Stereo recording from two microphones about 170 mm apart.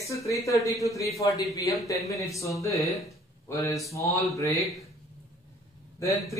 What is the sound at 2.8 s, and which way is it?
Speech, centre (ahead or behind).